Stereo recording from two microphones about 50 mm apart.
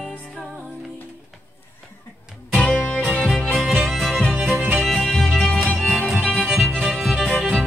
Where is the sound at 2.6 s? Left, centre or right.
Centre.